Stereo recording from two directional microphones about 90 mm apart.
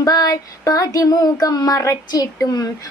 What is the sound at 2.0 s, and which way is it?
Speech, 40° left (ahead or behind).